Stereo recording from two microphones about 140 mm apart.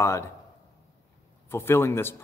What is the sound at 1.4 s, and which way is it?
Speech, 15° left (ahead or behind).